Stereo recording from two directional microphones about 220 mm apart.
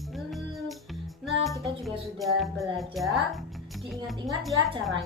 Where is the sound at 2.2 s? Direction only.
Centre (ahead or behind).